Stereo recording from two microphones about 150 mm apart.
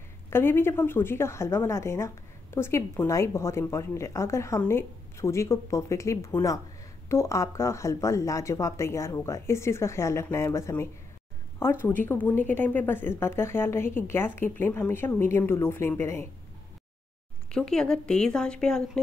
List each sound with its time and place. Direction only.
0.3 s a woman's voice: 15° left (ahead or behind)
17.5 s a woman's voice: 5° left (ahead or behind)